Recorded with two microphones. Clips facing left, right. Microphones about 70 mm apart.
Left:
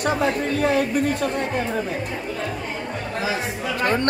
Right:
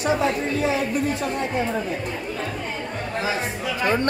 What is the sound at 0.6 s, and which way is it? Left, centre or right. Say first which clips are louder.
Speech: left 4 dB; left.